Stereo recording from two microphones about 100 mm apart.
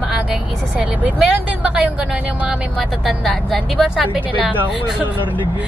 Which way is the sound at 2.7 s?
5° left (ahead or behind).